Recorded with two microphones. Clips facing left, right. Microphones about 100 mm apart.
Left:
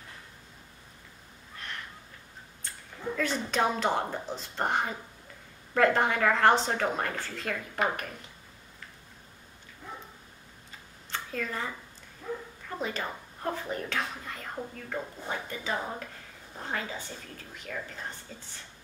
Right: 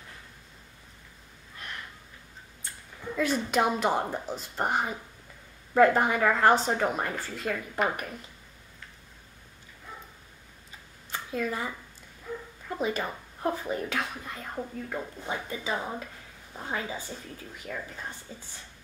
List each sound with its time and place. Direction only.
3.2 s a woman's voice: 10° right (ahead or behind)
11.1 s a sound: 10° right (ahead or behind)
12.7 s a woman's voice: 10° right (ahead or behind)